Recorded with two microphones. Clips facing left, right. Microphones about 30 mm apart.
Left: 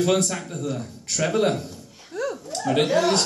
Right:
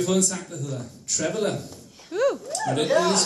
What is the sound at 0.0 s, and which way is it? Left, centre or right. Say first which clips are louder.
Speech: left 2 dB; left.